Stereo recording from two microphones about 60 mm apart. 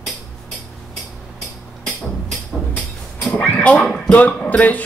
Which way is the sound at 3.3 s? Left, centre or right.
Left.